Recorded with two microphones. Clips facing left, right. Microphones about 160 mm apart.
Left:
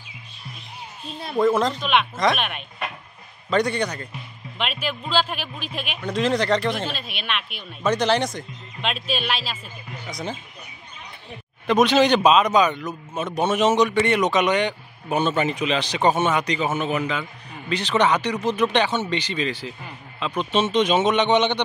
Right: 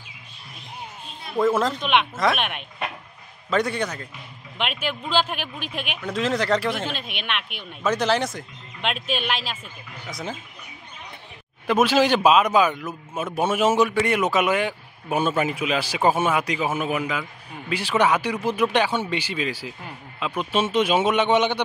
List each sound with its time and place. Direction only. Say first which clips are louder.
1.3 s speech: left 1 dB; 5° right (ahead or behind)
1.8 s a man's voice: even; 15° right (ahead or behind)
3.4 s speech: left 2 dB; 5° right (ahead or behind)
4.6 s a man's voice: even; 15° right (ahead or behind)
5.9 s speech: left 3 dB; centre (ahead or behind)
6.9 s a man's voice: even; 15° right (ahead or behind)
7.8 s speech: left 1 dB; 5° right (ahead or behind)
8.9 s a man's voice: even; 15° right (ahead or behind)
10.0 s speech: left 1 dB; 5° right (ahead or behind)
11.6 s a man's voice: left 2 dB; 5° right (ahead or behind)